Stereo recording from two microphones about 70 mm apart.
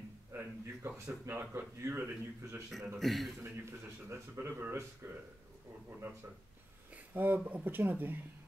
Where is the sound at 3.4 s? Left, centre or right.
Right.